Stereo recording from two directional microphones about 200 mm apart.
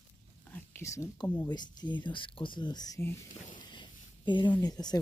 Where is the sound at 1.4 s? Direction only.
20° left (ahead or behind).